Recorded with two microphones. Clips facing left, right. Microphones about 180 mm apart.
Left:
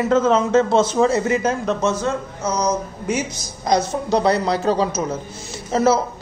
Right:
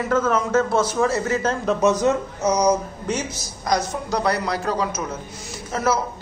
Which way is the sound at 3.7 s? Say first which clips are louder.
Left 4 dB; 25° left (ahead or behind).